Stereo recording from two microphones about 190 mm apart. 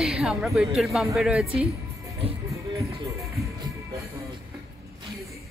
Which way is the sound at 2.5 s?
15° right (ahead or behind).